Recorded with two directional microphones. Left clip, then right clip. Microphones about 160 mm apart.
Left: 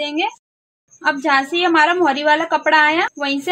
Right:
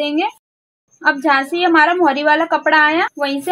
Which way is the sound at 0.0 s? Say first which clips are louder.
Right 2 dB; 15° right (ahead or behind).